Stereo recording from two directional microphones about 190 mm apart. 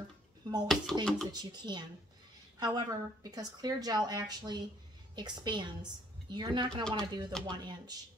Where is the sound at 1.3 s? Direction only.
20° right (ahead or behind).